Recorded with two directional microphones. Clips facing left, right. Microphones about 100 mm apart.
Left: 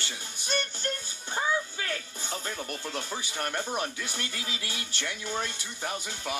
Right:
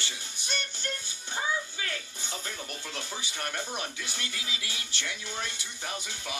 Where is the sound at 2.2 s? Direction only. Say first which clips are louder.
Left 5 dB; 45° left (ahead or behind).